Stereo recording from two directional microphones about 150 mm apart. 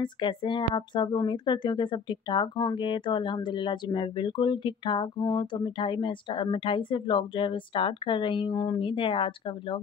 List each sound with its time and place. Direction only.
0.0 s speech: 30° left (ahead or behind)